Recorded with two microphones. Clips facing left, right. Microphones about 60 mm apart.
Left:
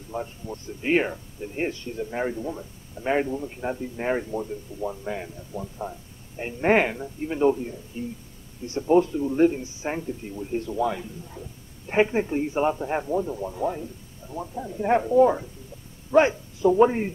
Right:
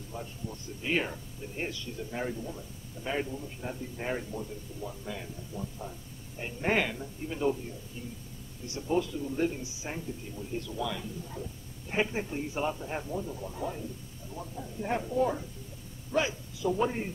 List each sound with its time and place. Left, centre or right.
0.1 s a man's voice: left
16.2 s a man's voice: left
16.8 s a man's voice: left